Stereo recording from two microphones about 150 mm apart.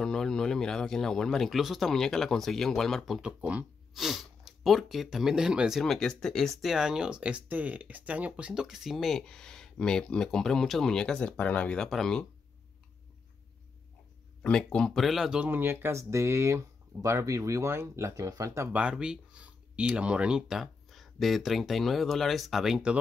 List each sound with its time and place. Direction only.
0.0 s speech: 5° left (ahead or behind)
14.4 s speech: 5° left (ahead or behind); by 18.7 s 20° right (ahead or behind)
18.7 s speech: 5° right (ahead or behind)